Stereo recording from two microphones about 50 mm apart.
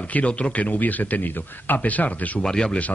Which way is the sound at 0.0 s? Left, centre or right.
Left.